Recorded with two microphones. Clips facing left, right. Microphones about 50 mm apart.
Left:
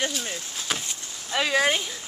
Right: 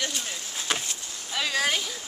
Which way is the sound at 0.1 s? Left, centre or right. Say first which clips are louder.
Left 2 dB; centre.